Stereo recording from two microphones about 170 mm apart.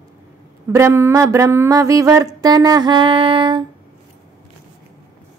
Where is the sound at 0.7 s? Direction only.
15° right (ahead or behind); by 3.6 s 30° right (ahead or behind).